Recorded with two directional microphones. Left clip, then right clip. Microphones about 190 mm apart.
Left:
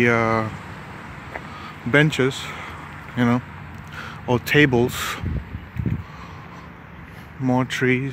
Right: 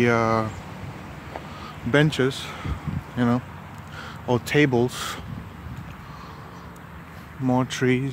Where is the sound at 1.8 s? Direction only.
5° left (ahead or behind).